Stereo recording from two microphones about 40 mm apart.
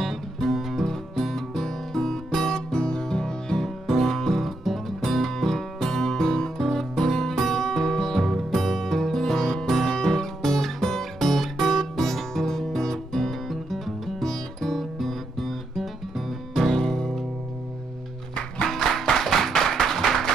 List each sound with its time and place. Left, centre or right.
0.0 s music: centre
2.4 s music: centre
4.0 s music: centre
13.7 s music: centre
18.6 s music: centre